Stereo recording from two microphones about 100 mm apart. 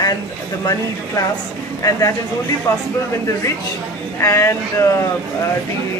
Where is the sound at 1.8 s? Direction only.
30° left (ahead or behind).